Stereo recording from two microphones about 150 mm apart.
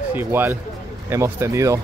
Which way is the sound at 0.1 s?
15° right (ahead or behind).